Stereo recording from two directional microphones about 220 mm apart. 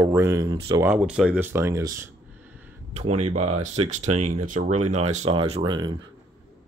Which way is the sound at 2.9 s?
30° right (ahead or behind).